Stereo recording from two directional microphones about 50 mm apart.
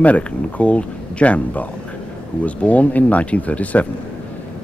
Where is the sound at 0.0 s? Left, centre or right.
Left.